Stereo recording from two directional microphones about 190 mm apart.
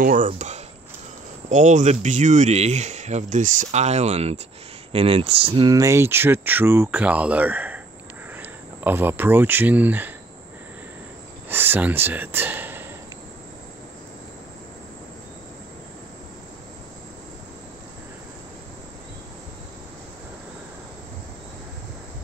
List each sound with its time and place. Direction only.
0.0 s speech: 45° right (ahead or behind); by 10.1 s 10° right (ahead or behind)
11.4 s speech: 10° right (ahead or behind)